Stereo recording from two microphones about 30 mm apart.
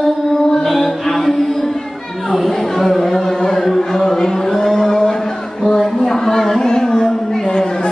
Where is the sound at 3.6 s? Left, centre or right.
Centre.